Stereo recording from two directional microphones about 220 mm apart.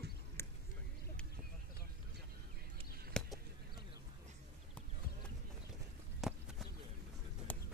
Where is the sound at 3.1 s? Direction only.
5° left (ahead or behind).